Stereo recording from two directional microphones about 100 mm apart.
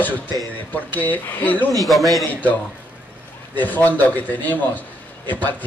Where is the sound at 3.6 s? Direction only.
15° left (ahead or behind).